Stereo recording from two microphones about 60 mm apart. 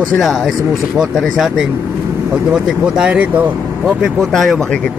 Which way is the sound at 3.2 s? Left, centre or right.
Right.